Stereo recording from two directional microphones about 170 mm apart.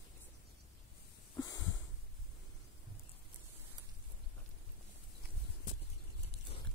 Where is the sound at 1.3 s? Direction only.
20° left (ahead or behind).